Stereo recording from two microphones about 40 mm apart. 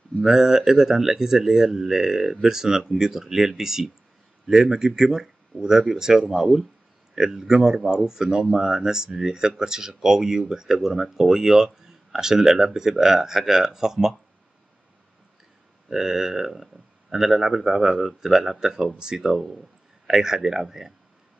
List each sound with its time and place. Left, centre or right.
0.2 s speech: centre
15.9 s speech: centre